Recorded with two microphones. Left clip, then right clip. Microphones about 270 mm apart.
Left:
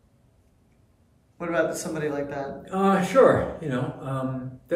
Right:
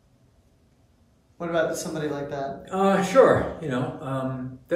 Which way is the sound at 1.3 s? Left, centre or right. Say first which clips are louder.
Even; centre.